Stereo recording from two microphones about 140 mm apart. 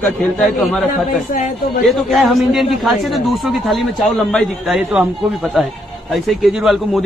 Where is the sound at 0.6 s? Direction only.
Centre (ahead or behind).